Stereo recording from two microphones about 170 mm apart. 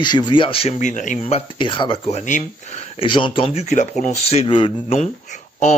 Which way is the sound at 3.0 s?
30° left (ahead or behind).